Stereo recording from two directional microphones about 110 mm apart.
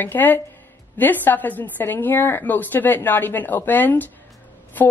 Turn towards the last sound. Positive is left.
turn(degrees=15)  # may be behind; listen again after turning